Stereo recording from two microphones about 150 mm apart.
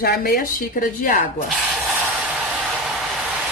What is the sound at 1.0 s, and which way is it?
Speech, 65° left (ahead or behind).